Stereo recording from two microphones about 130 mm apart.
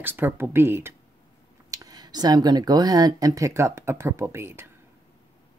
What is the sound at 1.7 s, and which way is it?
Speech, 30° right (ahead or behind).